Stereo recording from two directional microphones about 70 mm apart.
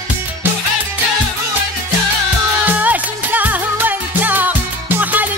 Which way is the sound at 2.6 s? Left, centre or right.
Right.